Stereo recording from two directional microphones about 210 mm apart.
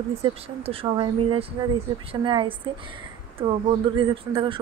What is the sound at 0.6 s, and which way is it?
Speech, 25° right (ahead or behind).